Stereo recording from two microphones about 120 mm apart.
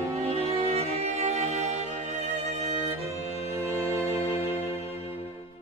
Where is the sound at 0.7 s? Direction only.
70° right (ahead or behind).